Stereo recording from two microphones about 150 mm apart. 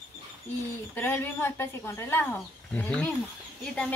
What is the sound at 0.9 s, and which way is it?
A man's voice, 15° left (ahead or behind).